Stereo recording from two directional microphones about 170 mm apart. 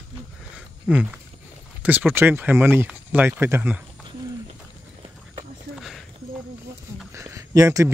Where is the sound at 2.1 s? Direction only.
10° right (ahead or behind).